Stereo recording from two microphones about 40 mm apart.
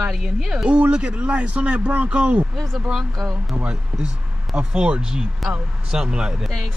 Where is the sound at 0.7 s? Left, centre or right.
Right.